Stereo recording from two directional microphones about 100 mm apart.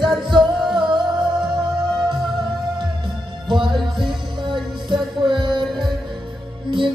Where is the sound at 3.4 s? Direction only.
50° right (ahead or behind).